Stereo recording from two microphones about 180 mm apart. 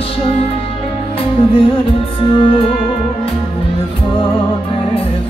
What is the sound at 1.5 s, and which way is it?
Music, 30° left (ahead or behind).